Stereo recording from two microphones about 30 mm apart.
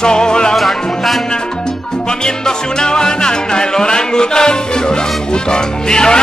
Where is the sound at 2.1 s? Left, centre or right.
Left.